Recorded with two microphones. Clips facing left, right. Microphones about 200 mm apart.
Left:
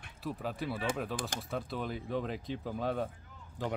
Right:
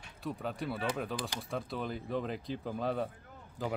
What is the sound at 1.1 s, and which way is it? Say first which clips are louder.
Speech: even; 50° left (ahead or behind).